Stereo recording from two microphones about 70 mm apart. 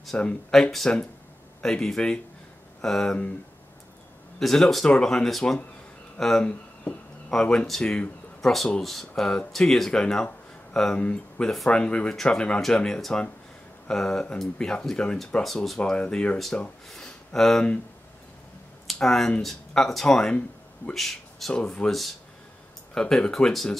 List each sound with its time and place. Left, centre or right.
0.1 s speech: centre
0.5 s speech: centre
4.4 s speech: centre
15.4 s speech: centre
15.8 s speech: centre
16.9 s a sound: centre
18.9 s speech: centre
22.9 s speech: centre